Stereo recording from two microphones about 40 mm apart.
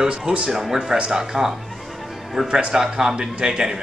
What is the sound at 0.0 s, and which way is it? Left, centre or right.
Speech, centre.